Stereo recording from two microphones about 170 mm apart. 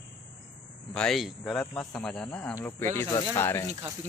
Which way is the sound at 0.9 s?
5° left (ahead or behind).